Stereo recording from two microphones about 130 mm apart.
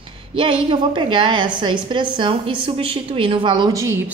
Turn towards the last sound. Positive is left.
turn(degrees=-25)  # may be behind; listen again after turning